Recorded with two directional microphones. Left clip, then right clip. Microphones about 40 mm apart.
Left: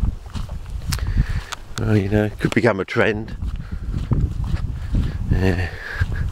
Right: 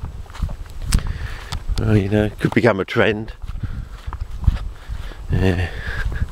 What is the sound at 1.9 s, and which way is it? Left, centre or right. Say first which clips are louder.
Speech: right 1 dB; centre.